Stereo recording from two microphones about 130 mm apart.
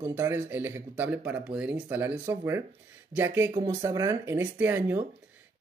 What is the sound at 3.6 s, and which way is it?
Speech, 30° right (ahead or behind).